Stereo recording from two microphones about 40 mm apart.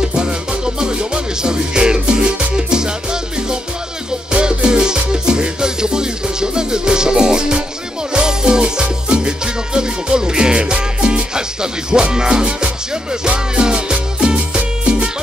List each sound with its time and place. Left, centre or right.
0.1 s music: right